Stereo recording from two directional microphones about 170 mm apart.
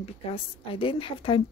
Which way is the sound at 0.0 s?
35° left (ahead or behind).